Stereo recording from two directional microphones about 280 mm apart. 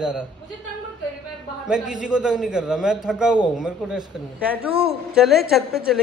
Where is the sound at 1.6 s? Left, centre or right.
Centre.